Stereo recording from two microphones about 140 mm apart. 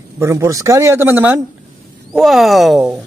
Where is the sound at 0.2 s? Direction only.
20° right (ahead or behind).